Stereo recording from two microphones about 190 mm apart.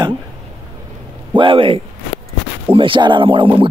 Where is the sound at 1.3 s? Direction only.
25° right (ahead or behind).